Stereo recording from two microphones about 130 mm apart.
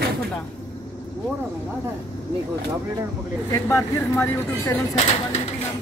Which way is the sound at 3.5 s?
20° left (ahead or behind).